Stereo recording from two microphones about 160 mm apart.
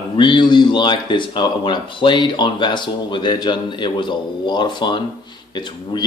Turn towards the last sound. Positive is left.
turn(degrees=30)  # may be behind; listen again after turning